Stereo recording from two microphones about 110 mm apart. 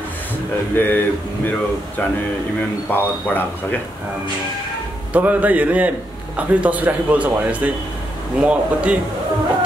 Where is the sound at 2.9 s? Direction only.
15° left (ahead or behind).